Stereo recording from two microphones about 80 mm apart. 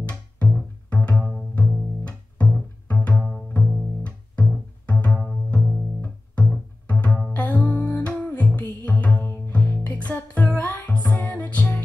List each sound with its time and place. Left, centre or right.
0.0 s music: centre
3.2 s bowed string instrument: centre
4.0 s music: centre
5.5 s bowed string instrument: centre
5.9 s music: centre